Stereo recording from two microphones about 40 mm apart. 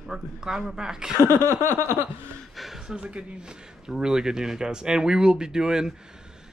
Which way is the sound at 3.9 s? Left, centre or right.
Centre.